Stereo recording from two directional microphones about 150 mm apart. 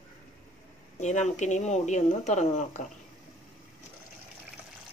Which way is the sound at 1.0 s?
50° left (ahead or behind).